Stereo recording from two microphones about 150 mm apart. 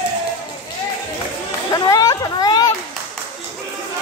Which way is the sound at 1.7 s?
25° left (ahead or behind).